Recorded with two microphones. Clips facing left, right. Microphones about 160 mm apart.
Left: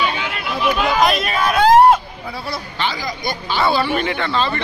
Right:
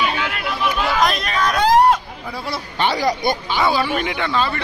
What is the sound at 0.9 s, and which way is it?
Hubbub, 5° left (ahead or behind).